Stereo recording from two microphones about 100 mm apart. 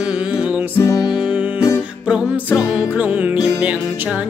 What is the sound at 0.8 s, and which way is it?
Music, 35° left (ahead or behind).